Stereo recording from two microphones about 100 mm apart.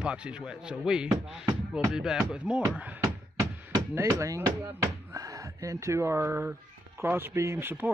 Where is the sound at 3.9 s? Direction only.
30° right (ahead or behind).